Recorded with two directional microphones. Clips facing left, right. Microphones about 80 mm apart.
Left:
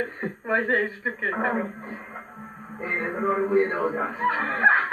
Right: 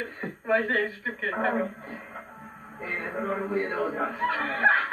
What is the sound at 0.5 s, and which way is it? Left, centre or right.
Speech, left.